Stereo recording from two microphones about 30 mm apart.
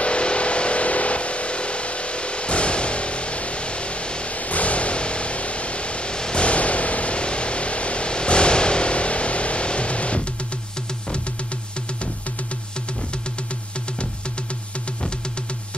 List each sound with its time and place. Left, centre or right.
0.0 s vehicle: left
4.3 s vehicle: left
6.1 s vehicle: left
6.4 s vehicle: left